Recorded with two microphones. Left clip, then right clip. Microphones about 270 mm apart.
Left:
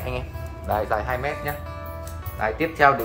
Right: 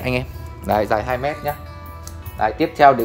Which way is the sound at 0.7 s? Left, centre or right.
Right.